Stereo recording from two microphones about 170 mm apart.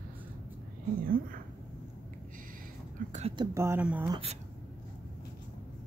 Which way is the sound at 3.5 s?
15° right (ahead or behind).